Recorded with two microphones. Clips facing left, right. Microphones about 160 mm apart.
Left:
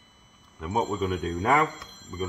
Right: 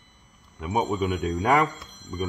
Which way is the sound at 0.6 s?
10° right (ahead or behind).